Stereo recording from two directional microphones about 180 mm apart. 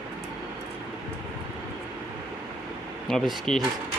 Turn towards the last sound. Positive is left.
turn(degrees=0)  # may be behind; listen again after turning